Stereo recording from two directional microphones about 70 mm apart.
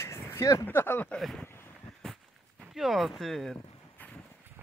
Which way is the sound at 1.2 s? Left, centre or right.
Centre.